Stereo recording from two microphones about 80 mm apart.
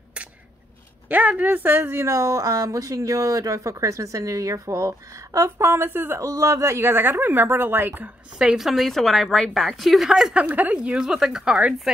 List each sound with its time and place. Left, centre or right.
1.0 s speech: centre
2.0 s speech: right
6.2 s speech: right
8.4 s a woman's voice: centre
10.4 s a woman's voice: centre